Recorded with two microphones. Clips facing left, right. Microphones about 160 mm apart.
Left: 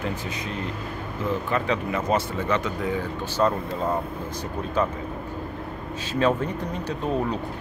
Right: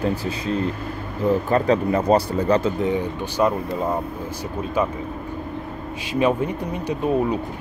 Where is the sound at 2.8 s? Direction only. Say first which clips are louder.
Right 5 dB; 15° right (ahead or behind).